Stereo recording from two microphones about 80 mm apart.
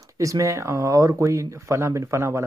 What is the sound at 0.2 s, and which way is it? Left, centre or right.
Speech, right.